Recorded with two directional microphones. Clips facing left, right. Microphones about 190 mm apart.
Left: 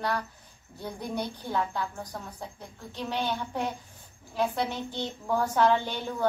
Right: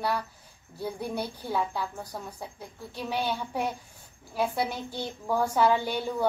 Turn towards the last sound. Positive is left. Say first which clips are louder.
# right 2 dB
turn(degrees=-10)  # may be behind; listen again after turning